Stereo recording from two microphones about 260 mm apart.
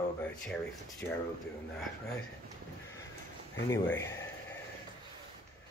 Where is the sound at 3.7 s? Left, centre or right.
Centre.